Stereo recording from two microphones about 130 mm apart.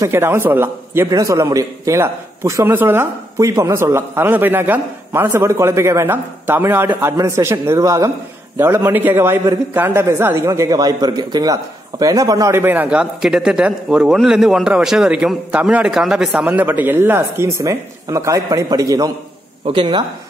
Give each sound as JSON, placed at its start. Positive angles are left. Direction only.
{"t": 0.0, "sound": "a man's voice", "side_deg": -20}
{"t": 19.6, "sound": "a man's voice", "side_deg": -40}